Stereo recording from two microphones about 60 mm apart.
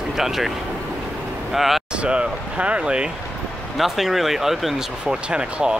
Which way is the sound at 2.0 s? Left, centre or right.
Centre.